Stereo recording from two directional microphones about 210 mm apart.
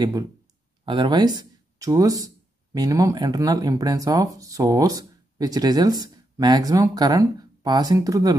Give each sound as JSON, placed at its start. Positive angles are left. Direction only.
{"t": 0.8, "sound": "speech", "side_deg": -20}